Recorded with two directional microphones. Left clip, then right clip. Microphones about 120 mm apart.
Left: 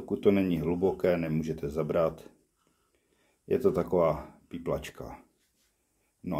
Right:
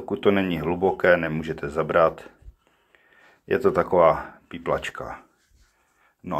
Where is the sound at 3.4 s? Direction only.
20° left (ahead or behind).